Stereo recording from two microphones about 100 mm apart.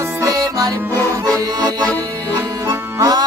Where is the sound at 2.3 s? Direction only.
40° right (ahead or behind).